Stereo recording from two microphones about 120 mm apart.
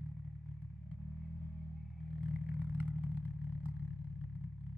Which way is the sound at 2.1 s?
10° right (ahead or behind).